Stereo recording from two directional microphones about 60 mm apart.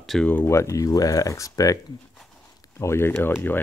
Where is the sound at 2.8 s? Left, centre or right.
Left.